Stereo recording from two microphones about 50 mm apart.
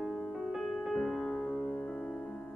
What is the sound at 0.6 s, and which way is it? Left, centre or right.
Music, centre.